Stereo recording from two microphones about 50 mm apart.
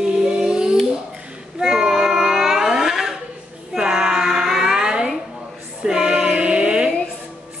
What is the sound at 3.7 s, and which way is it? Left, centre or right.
Child singing, centre.